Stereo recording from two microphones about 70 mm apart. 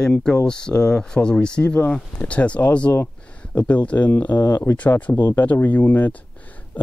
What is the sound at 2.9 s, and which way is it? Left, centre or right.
Speech, left.